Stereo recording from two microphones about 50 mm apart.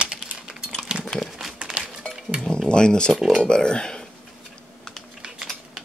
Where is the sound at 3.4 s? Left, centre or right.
Centre.